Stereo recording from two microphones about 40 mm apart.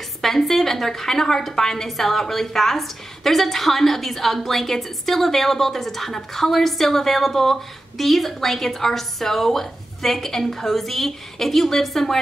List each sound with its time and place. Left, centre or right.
0.2 s a woman's voice: centre